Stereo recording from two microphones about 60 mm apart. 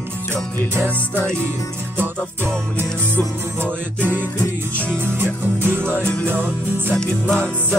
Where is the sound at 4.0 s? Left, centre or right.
Right.